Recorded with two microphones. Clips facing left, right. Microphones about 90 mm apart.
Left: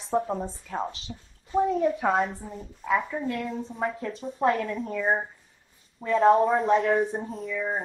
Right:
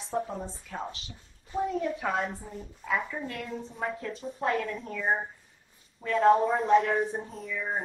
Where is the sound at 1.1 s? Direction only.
20° left (ahead or behind).